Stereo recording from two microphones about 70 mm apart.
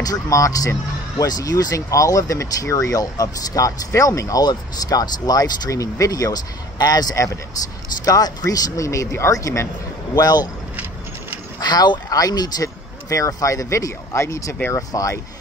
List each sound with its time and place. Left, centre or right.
0.0 s speech: left
4.4 s speech: left
10.1 s speech: left
11.6 s speech: left
14.8 s speech: left